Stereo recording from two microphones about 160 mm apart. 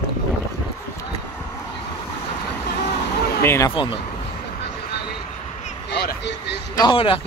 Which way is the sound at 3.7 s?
30° left (ahead or behind).